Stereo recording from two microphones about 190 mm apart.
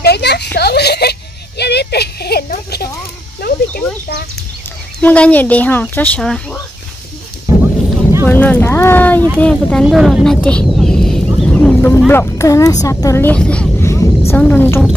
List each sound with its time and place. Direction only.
0.0 s a sound: 60° left (ahead or behind)
5.0 s speech: 10° left (ahead or behind)
8.3 s speech: 10° left (ahead or behind)
12.1 s vehicle: 15° left (ahead or behind)